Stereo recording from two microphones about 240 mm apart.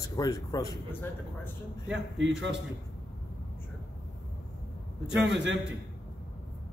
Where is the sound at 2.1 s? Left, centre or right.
Right.